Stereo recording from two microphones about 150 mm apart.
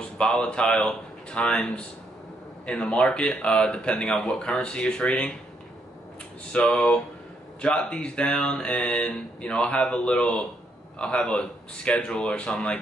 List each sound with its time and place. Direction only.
0.2 s speech: 5° left (ahead or behind)
6.5 s speech: 5° left (ahead or behind)